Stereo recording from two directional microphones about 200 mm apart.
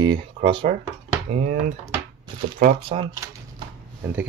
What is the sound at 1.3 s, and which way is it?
Cutlery, 40° right (ahead or behind).